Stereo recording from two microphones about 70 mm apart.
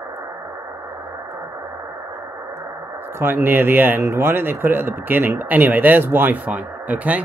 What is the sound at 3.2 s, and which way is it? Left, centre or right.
Speech, right.